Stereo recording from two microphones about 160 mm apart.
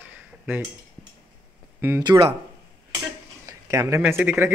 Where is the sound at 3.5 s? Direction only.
20° right (ahead or behind).